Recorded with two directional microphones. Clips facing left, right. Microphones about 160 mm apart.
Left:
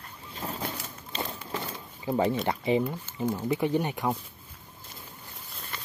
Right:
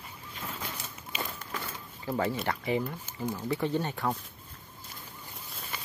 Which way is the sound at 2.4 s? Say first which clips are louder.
Left 4 dB; 20° left (ahead or behind).